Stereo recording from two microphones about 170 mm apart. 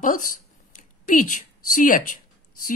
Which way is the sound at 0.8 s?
50° left (ahead or behind).